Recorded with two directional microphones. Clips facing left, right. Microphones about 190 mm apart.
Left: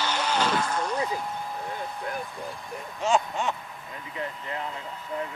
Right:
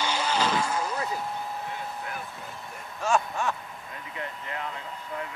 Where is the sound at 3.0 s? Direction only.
20° left (ahead or behind).